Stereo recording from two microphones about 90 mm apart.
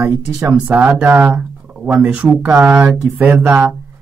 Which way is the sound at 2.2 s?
25° right (ahead or behind).